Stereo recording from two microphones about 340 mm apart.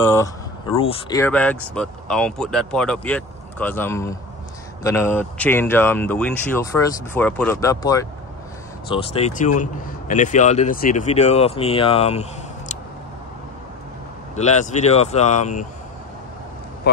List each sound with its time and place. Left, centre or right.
0.0 s speech: centre
14.3 s speech: centre